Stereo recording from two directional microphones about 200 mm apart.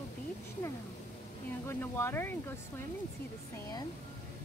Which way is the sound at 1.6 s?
10° left (ahead or behind).